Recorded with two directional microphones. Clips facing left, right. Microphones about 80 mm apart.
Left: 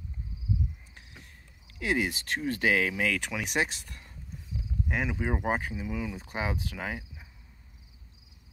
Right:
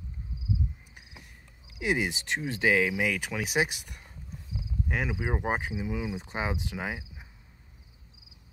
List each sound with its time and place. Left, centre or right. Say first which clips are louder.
1.7 s speech: even; centre
2.9 s speech: even; centre
4.6 s speech: even; centre